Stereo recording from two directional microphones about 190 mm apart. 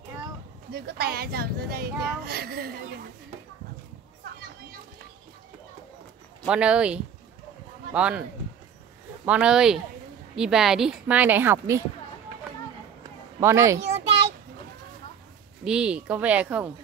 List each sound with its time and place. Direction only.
0.7 s a child's voice: 55° right (ahead or behind)
6.4 s speech: 5° right (ahead or behind)
9.2 s a woman's voice: 5° right (ahead or behind)
13.4 s a woman's voice: 15° right (ahead or behind)
13.7 s a sound: 35° right (ahead or behind)
15.6 s a woman's voice: 5° right (ahead or behind)